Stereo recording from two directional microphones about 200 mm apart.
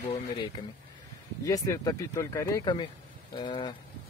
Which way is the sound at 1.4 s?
15° left (ahead or behind).